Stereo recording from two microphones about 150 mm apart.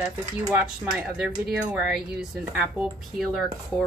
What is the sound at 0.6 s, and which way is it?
Speech, 5° right (ahead or behind).